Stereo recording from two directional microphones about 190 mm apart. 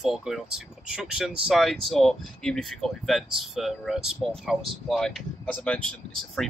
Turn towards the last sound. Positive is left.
turn(degrees=5)  # may be behind; listen again after turning